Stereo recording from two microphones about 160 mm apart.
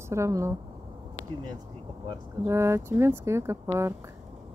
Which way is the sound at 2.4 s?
15° right (ahead or behind).